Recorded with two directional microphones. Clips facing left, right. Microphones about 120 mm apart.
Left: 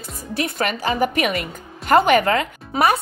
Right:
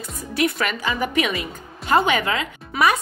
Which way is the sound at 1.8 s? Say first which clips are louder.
Left 4 dB; 55° left (ahead or behind).